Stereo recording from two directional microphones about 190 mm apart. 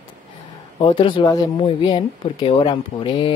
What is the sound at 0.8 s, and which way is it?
Speech, 25° left (ahead or behind).